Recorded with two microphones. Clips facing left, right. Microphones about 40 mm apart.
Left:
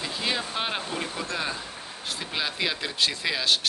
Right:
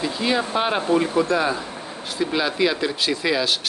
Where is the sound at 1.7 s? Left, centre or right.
Centre.